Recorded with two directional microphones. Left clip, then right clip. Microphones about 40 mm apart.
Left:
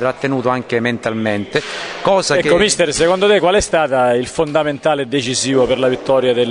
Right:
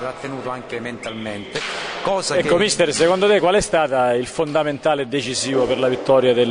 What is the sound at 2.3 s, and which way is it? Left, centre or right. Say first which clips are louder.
Speech: left 4 dB; centre.